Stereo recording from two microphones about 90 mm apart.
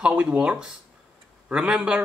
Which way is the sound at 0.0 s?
15° right (ahead or behind).